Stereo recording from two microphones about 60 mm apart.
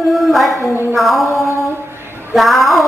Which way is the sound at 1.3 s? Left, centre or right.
Left.